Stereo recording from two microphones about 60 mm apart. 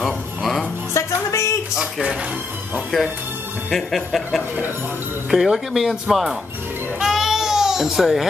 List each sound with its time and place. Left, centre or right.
0.0 s music: centre
0.9 s music: left
1.8 s music: centre
3.7 s speech: centre
7.0 s music: centre